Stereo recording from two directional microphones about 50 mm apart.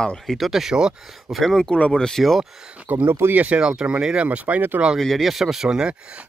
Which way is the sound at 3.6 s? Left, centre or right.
Centre.